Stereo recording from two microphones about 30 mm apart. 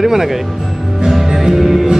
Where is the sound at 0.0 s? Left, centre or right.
Centre.